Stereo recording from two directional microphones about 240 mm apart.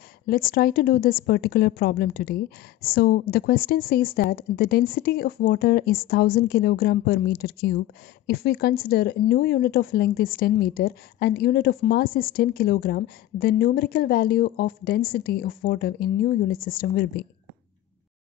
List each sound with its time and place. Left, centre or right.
0.3 s speech: left